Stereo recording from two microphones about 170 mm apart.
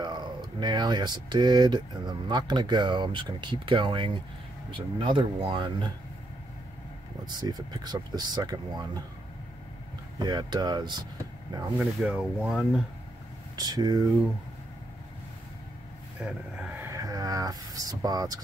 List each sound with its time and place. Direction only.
0.0 s speech: 25° right (ahead or behind)
7.2 s speech: 25° right (ahead or behind)
10.1 s speech: 25° right (ahead or behind)
11.8 s speech: 5° right (ahead or behind)
13.6 s speech: 25° right (ahead or behind)
16.2 s a sound: 5° right (ahead or behind); by 18.4 s 20° right (ahead or behind)